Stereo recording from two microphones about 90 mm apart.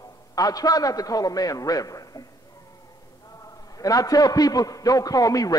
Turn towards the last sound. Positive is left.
turn(degrees=40)  # may be behind; listen again after turning